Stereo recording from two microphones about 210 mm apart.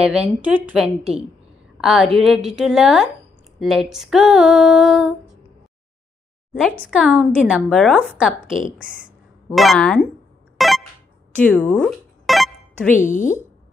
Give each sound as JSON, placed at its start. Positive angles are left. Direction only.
{"t": 0.0, "sound": "female singing", "side_deg": -5}
{"t": 6.8, "sound": "female singing", "side_deg": -5}
{"t": 10.6, "sound": "a sound", "side_deg": 0}
{"t": 11.3, "sound": "music", "side_deg": 5}
{"t": 13.1, "sound": "speech", "side_deg": 35}